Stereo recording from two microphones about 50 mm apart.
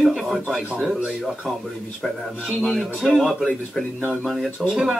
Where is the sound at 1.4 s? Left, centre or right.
Centre.